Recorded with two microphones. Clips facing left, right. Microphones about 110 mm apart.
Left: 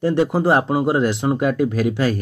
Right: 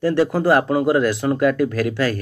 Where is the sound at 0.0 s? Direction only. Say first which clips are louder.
Even; 20° left (ahead or behind).